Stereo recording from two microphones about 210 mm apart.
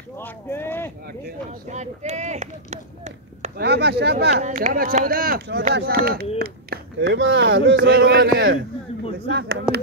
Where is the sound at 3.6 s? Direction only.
55° right (ahead or behind).